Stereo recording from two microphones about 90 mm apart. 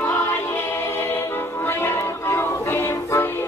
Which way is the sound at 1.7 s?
25° left (ahead or behind).